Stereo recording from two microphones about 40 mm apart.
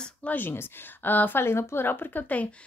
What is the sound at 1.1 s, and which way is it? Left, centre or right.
Speech, left.